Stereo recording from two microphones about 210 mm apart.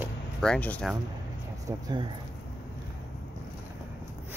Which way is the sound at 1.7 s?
20° right (ahead or behind).